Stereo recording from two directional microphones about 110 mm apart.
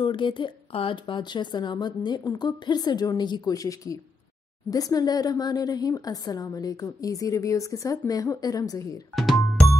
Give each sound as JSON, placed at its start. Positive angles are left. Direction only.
{"t": 0.0, "sound": "speech", "side_deg": 45}
{"t": 9.1, "sound": "music", "side_deg": 0}